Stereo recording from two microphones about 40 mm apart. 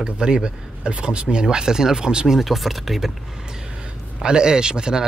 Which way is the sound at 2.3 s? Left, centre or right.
Centre.